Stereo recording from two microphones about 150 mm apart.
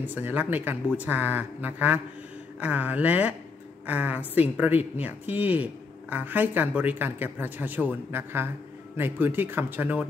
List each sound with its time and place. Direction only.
0.0 s speech: 10° right (ahead or behind)